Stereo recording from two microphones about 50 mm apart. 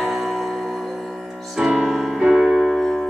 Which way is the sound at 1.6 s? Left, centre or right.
Centre.